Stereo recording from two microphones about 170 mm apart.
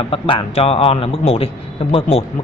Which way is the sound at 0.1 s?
35° left (ahead or behind).